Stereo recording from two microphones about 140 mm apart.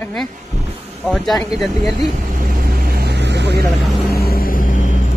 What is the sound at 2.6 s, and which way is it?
Vehicle, 90° right.